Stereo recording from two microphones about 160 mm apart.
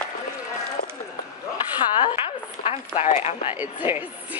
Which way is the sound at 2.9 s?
45° left (ahead or behind).